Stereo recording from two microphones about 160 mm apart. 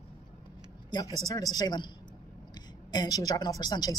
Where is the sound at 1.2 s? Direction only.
25° left (ahead or behind).